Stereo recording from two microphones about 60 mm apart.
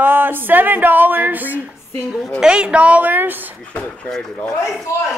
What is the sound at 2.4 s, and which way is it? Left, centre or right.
A woman's voice, centre.